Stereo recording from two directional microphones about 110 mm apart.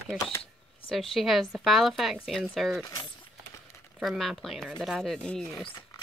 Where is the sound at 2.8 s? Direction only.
35° left (ahead or behind).